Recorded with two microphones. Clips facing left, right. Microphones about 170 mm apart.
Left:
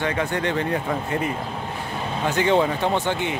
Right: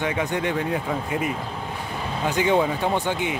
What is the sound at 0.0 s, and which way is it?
Speech, 15° right (ahead or behind).